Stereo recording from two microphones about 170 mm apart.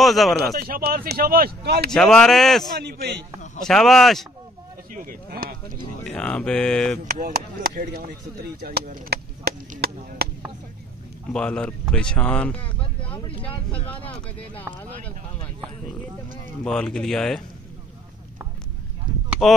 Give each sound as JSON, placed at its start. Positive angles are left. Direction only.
{"t": 0.0, "sound": "speech", "side_deg": 0}
{"t": 0.6, "sound": "speech", "side_deg": -60}
{"t": 1.9, "sound": "speech", "side_deg": 5}
{"t": 2.7, "sound": "a man's voice", "side_deg": -65}
{"t": 3.6, "sound": "speech", "side_deg": 0}
{"t": 4.9, "sound": "speech", "side_deg": -55}
{"t": 6.0, "sound": "speech", "side_deg": 5}
{"t": 7.2, "sound": "speech", "side_deg": -60}
{"t": 11.3, "sound": "speech", "side_deg": 5}
{"t": 13.7, "sound": "speech", "side_deg": 30}
{"t": 16.6, "sound": "speech", "side_deg": 5}
{"t": 19.4, "sound": "speech", "side_deg": 0}